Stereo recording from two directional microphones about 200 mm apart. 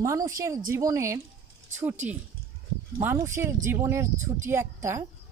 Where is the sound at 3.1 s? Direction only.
15° right (ahead or behind).